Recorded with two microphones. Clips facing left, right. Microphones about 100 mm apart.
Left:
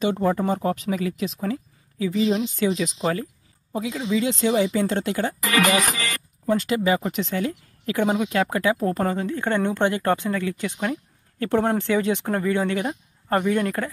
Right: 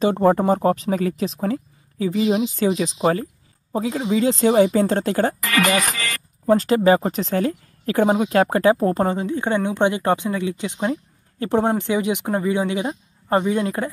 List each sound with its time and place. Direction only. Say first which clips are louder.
0.0 s speech: right 5 dB; 40° right (ahead or behind)
4.7 s speech: right 4 dB; 40° right (ahead or behind)
6.4 s speech: right 6 dB; 40° right (ahead or behind); by 13.9 s 20° right (ahead or behind)